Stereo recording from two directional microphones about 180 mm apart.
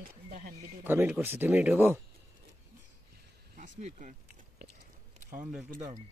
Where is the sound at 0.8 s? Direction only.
10° right (ahead or behind).